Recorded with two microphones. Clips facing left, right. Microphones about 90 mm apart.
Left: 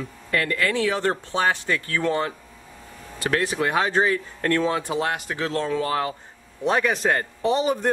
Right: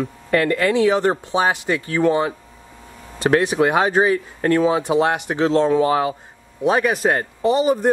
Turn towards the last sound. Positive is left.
turn(degrees=-5)  # may be behind; listen again after turning